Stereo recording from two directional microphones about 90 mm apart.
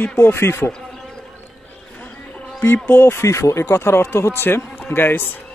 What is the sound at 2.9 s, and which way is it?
Speech, 25° left (ahead or behind).